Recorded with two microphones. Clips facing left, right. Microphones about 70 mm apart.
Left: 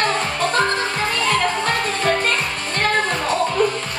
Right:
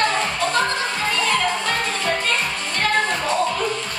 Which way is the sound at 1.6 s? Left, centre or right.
Left.